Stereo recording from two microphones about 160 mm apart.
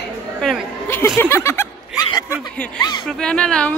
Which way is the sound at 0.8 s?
15° left (ahead or behind).